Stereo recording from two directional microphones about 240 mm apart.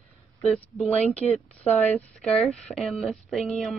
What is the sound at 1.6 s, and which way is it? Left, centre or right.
Speech, left.